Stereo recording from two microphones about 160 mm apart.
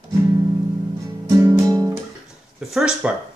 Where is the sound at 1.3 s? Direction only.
20° right (ahead or behind).